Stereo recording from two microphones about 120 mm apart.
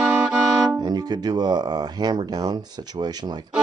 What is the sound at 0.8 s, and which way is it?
Speech, 35° right (ahead or behind).